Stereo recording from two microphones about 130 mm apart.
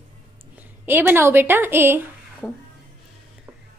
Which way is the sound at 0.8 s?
15° right (ahead or behind).